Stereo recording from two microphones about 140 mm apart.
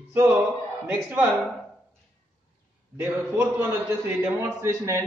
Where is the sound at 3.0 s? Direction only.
15° right (ahead or behind).